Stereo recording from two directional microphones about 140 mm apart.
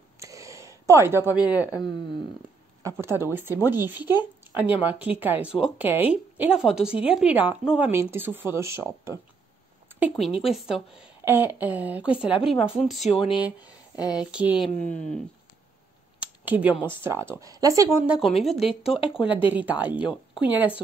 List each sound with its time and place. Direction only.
0.2 s a sound: 20° right (ahead or behind)
2.8 s a woman's voice: 20° right (ahead or behind)
10.1 s a woman's voice: centre (ahead or behind)
14.6 s speech: 10° left (ahead or behind)
16.2 s computer keyboard: 10° right (ahead or behind)
17.0 s speech: 15° right (ahead or behind)
18.0 s a woman's voice: 5° right (ahead or behind)